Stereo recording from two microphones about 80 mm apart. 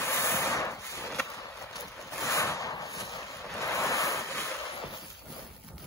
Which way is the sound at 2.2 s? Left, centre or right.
Left.